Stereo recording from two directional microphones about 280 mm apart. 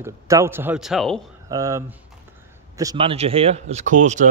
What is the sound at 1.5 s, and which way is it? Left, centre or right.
Speech, centre.